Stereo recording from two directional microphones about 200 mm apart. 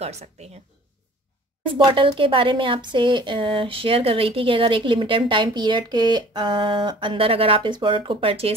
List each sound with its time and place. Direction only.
0.0 s a woman's voice: 30° right (ahead or behind)
1.7 s speech: 25° right (ahead or behind)